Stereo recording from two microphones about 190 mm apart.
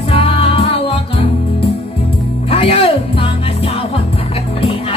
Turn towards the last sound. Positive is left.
turn(degrees=30)  # may be behind; listen again after turning